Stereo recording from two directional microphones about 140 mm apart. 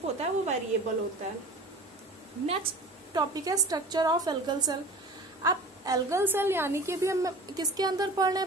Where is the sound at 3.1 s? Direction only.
25° right (ahead or behind).